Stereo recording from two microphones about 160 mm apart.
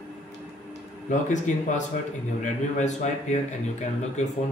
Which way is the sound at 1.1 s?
50° left (ahead or behind).